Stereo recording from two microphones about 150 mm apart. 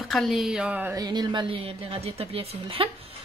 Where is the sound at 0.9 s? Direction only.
25° right (ahead or behind).